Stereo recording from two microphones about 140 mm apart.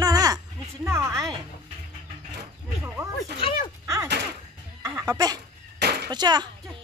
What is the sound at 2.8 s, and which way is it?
Speech, 10° right (ahead or behind).